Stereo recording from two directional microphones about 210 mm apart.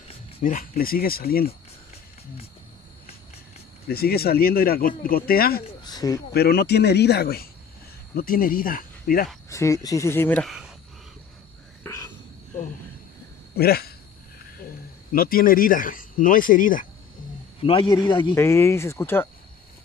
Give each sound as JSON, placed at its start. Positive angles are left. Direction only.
{"t": 0.1, "sound": "speech", "side_deg": 40}
{"t": 3.9, "sound": "speech", "side_deg": 45}
{"t": 5.9, "sound": "speech", "side_deg": 15}
{"t": 6.3, "sound": "speech", "side_deg": 50}
{"t": 9.5, "sound": "speech", "side_deg": 15}
{"t": 11.8, "sound": "cricket", "side_deg": 15}
{"t": 13.6, "sound": "speech", "side_deg": 45}
{"t": 15.1, "sound": "speech", "side_deg": 45}
{"t": 17.6, "sound": "speech", "side_deg": 25}